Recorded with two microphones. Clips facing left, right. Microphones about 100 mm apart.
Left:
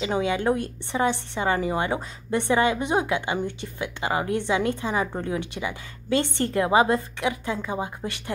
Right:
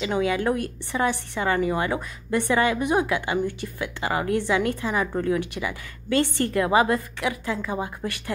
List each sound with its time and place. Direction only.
0.0 s a woman's voice: 25° left (ahead or behind)